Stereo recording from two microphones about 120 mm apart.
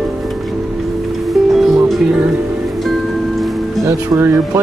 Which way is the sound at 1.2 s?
Centre (ahead or behind).